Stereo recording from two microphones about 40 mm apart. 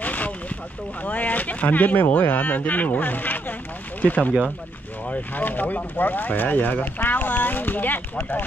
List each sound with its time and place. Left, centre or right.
0.0 s boat: left
1.0 s speech: left
5.3 s speech: left